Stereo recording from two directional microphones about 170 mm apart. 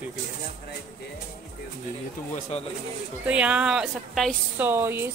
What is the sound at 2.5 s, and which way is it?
Speech, 40° left (ahead or behind).